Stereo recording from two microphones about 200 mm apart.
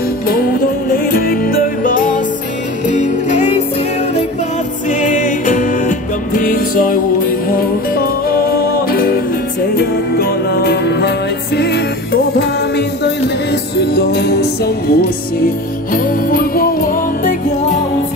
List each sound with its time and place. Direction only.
0.9 s music: 45° left (ahead or behind)
4.8 s music: 40° left (ahead or behind)